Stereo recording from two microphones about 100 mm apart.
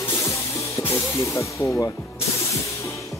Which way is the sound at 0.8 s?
30° left (ahead or behind).